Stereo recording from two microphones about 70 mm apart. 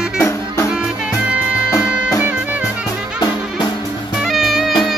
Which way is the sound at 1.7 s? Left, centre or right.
Left.